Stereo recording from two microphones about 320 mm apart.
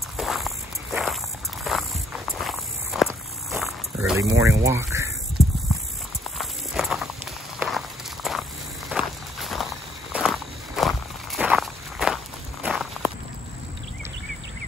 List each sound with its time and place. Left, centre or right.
0.2 s walk: centre
4.4 s speech: centre
5.4 s clip-clop: centre
6.3 s walk: centre